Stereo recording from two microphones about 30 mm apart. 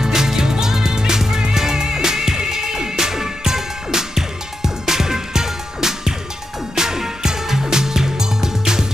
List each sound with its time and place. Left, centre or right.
0.0 s music: centre